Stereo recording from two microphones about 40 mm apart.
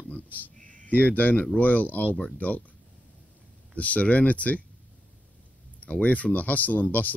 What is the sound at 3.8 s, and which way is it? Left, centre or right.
Speech, left.